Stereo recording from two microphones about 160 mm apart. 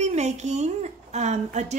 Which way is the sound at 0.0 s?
45° right (ahead or behind).